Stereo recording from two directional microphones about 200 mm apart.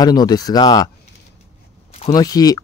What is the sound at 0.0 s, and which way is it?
Speech, 20° left (ahead or behind).